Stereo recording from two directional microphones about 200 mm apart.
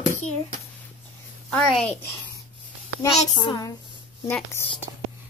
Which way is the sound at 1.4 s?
5° left (ahead or behind).